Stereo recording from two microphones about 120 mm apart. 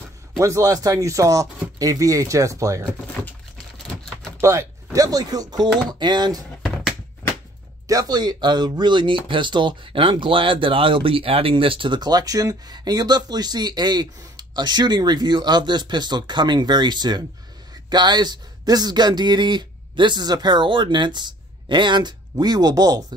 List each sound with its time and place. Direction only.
0.4 s speech: 30° right (ahead or behind)
3.8 s typing: 5° left (ahead or behind)
4.4 s speech: 25° right (ahead or behind)
7.9 s speech: 30° right (ahead or behind)